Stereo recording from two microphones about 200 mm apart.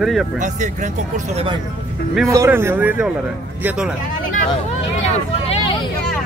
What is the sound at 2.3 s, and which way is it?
Speech, 15° right (ahead or behind).